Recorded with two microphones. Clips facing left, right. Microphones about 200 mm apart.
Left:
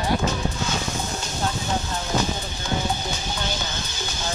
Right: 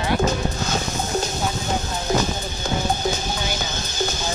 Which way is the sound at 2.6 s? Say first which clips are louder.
Right 2 dB; 40° right (ahead or behind).